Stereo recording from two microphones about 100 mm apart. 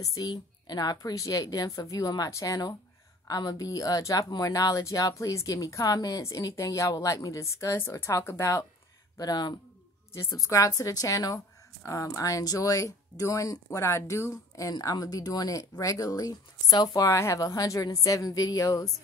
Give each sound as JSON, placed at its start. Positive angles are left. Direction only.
{"t": 0.0, "sound": "a woman's voice", "side_deg": 35}
{"t": 9.1, "sound": "speech", "side_deg": 40}
{"t": 10.1, "sound": "a woman's voice", "side_deg": 35}